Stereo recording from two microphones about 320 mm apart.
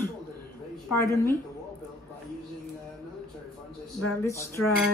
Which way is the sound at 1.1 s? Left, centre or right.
Centre.